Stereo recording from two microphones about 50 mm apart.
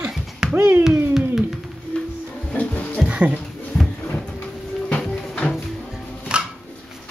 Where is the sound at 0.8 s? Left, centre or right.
Centre.